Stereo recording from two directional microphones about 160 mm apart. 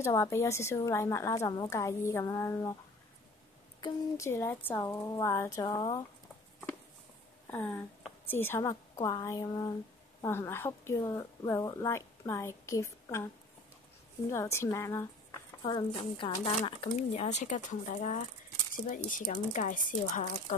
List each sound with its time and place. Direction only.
0.0 s a woman's voice: 15° left (ahead or behind)
3.8 s a woman's voice: 20° left (ahead or behind)
7.4 s a sound: 10° left (ahead or behind)
8.3 s a woman's voice: 15° left (ahead or behind)
14.3 s a woman's voice: 15° left (ahead or behind)
15.6 s speech: 30° left (ahead or behind); by 20.5 s 50° left (ahead or behind)